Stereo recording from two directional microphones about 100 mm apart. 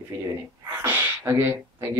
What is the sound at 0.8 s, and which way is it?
Speech, 20° right (ahead or behind).